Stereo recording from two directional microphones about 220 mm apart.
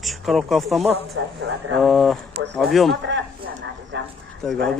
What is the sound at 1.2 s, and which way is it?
Speech, 65° right (ahead or behind).